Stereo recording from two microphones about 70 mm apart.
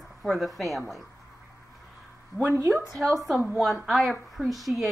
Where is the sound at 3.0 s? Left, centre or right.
Centre.